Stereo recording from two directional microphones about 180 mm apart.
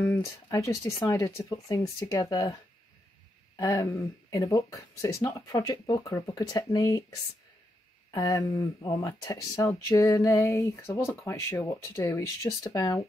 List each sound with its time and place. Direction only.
0.0 s speech: 15° left (ahead or behind)
3.5 s speech: 15° left (ahead or behind)
8.1 s speech: 20° left (ahead or behind)